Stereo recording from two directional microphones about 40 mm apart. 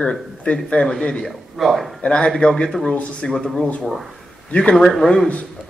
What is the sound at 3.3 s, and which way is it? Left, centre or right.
Speech, centre.